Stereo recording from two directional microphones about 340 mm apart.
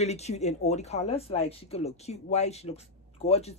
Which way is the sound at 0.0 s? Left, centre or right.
Centre.